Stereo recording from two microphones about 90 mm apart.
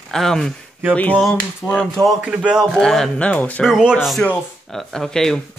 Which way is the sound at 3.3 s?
15° left (ahead or behind).